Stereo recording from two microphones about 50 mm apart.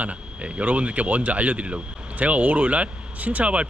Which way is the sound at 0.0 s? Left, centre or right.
Right.